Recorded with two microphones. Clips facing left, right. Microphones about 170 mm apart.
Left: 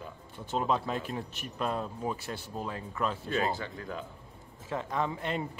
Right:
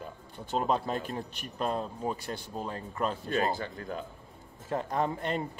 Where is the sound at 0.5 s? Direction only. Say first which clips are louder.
Right 1 dB; 40° right (ahead or behind).